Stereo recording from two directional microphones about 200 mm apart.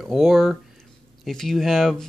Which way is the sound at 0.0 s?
Centre (ahead or behind).